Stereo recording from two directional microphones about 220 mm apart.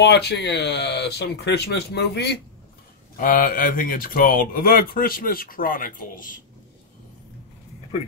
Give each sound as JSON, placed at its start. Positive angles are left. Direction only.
{"t": 0.0, "sound": "speech", "side_deg": 50}